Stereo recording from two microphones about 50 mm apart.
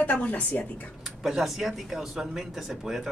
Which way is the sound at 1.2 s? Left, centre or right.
Centre.